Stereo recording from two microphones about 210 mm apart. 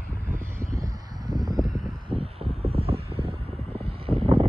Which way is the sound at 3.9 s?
25° right (ahead or behind).